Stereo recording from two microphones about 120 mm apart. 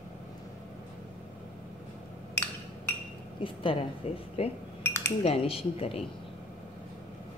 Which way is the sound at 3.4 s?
45° left (ahead or behind).